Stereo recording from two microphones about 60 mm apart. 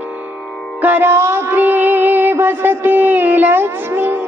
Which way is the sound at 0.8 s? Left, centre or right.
Right.